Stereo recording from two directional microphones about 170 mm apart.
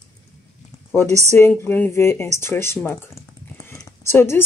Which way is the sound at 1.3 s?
15° left (ahead or behind).